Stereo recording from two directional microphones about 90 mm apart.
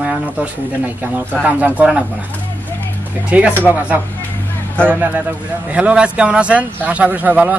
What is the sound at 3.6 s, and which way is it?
Speech, 15° right (ahead or behind).